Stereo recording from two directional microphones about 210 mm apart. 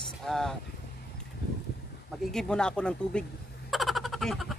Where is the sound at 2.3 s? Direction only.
5° left (ahead or behind).